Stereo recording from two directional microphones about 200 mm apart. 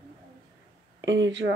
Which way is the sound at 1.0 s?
65° right (ahead or behind).